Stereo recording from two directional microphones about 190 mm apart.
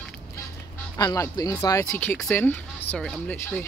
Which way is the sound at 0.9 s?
15° left (ahead or behind).